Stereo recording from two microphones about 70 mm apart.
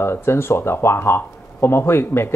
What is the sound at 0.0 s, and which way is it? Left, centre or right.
Speech, left.